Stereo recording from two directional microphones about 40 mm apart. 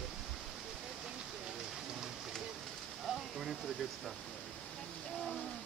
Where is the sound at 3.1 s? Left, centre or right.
Centre.